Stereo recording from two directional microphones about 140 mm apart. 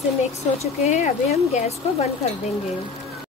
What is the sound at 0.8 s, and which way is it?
Speech, 50° left (ahead or behind).